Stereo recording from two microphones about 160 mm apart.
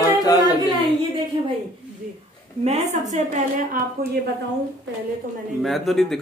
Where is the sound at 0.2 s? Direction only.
25° left (ahead or behind).